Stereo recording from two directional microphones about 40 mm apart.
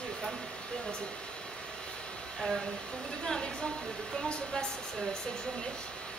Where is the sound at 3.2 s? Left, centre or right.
Centre.